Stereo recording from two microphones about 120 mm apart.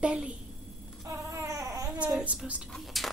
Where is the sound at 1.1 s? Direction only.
25° right (ahead or behind).